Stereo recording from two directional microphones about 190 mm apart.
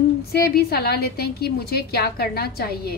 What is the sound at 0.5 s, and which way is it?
A woman's voice, 55° left (ahead or behind).